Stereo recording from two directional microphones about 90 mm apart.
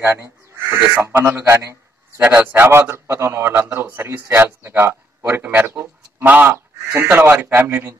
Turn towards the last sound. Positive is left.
turn(degrees=-25)  # may be behind; listen again after turning